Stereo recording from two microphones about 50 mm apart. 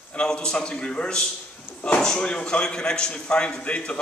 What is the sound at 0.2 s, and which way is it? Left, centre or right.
A man's voice, centre.